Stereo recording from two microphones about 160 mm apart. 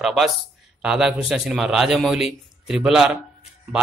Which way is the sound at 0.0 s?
Centre (ahead or behind).